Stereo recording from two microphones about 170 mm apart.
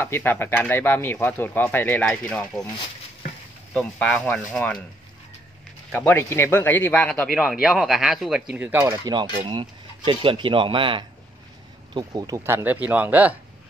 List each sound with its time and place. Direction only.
0.0 s speech: 15° left (ahead or behind)
3.7 s speech: 5° left (ahead or behind)
5.9 s speech: 10° left (ahead or behind)
7.6 s speech: 5° right (ahead or behind)